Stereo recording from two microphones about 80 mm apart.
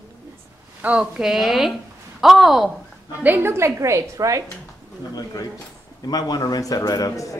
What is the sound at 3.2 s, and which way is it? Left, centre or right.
A woman's voice, right.